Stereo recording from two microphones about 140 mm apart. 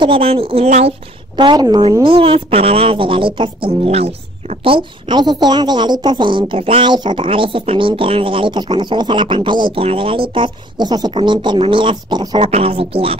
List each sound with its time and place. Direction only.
0.0 s speech: 40° right (ahead or behind)
1.3 s a woman's voice: 35° right (ahead or behind)
12.4 s speech: 45° right (ahead or behind)